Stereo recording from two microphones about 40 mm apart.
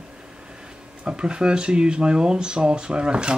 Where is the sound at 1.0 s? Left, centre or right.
Right.